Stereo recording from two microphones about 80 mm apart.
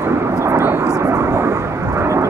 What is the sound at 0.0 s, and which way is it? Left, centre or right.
Aircraft, right.